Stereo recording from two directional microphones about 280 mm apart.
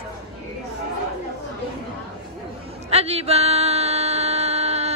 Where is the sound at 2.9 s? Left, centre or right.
Right.